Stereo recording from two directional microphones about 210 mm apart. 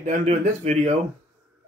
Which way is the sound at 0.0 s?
30° right (ahead or behind).